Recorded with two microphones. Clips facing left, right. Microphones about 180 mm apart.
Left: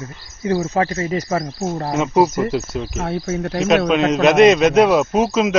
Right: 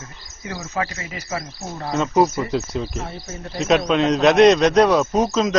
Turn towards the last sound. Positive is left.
turn(degrees=10)  # may be behind; listen again after turning